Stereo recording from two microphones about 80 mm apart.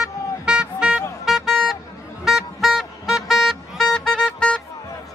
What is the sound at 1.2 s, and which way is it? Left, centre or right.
Vehicle, centre.